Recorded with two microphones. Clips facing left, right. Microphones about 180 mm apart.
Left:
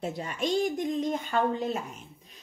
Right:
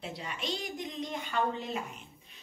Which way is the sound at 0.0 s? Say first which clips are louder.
Left 7 dB; 45° left (ahead or behind).